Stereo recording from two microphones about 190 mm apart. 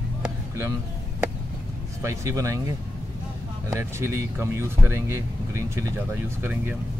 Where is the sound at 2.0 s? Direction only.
15° right (ahead or behind).